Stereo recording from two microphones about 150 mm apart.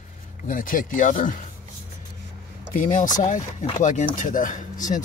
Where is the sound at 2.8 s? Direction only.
60° left (ahead or behind).